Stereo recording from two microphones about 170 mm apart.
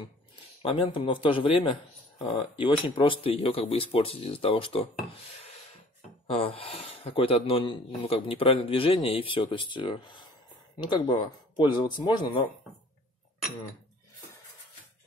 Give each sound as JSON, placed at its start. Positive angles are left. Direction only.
{"t": 0.6, "sound": "speech", "side_deg": 30}
{"t": 6.2, "sound": "speech", "side_deg": 35}